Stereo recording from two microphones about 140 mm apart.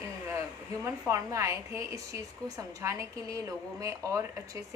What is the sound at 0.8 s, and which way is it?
A woman's voice, 20° right (ahead or behind).